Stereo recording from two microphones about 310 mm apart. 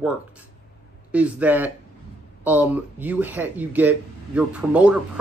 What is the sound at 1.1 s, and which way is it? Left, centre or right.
Speech, centre.